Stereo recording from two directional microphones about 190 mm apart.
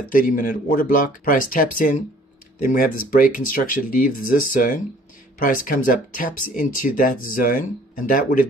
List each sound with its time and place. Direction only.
0.1 s speech: 50° left (ahead or behind)